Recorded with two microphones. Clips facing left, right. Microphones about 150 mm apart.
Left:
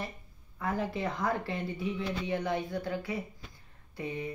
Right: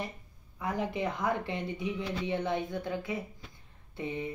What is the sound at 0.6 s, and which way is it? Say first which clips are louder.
Speech: even; 15° right (ahead or behind).